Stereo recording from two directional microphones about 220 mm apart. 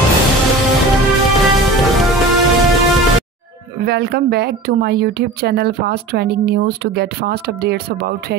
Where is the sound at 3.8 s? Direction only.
45° right (ahead or behind).